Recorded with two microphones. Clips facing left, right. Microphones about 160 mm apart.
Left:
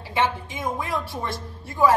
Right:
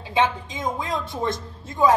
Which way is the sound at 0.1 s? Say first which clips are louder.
Right 2 dB; 20° right (ahead or behind).